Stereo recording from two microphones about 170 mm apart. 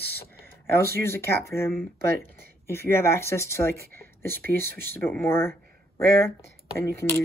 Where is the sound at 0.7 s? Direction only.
15° left (ahead or behind).